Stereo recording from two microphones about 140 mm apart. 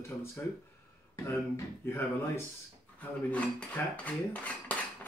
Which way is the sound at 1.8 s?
15° left (ahead or behind).